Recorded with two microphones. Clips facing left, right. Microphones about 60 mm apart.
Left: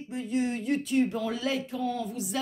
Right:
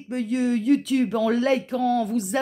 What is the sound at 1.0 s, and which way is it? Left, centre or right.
Speech, right.